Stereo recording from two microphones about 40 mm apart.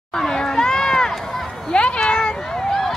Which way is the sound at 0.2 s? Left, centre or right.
Centre.